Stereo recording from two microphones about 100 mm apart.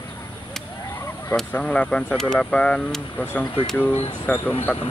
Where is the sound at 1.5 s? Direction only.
10° left (ahead or behind).